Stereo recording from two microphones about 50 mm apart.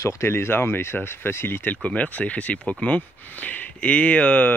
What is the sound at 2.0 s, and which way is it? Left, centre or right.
Speech, left.